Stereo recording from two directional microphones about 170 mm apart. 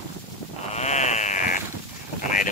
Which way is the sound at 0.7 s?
40° left (ahead or behind).